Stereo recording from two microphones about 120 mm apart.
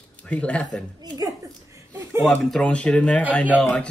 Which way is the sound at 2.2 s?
Centre (ahead or behind).